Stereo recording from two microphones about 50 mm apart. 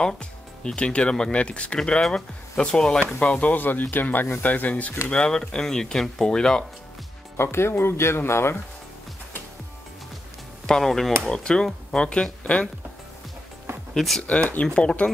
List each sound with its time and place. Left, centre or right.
0.0 s speech: centre
5.1 s speech: centre
7.3 s speech: left
10.8 s speech: centre; by 12.6 s left
13.9 s speech: centre
14.4 s speech: left
14.7 s speech: centre